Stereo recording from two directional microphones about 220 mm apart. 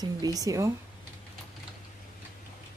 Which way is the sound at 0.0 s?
15° right (ahead or behind).